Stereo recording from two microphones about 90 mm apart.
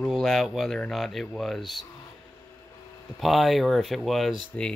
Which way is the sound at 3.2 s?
Centre (ahead or behind).